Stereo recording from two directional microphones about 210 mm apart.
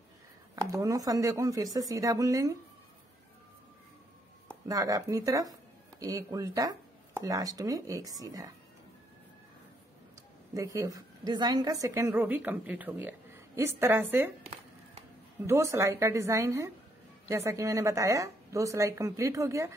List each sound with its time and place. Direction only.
0.6 s a woman's voice: 15° right (ahead or behind)
4.5 s a woman's voice: 15° right (ahead or behind)
10.5 s a woman's voice: 15° right (ahead or behind)
15.4 s a woman's voice: 15° right (ahead or behind)